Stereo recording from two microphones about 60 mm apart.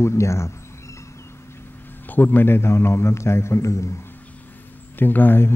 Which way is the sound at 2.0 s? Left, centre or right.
Left.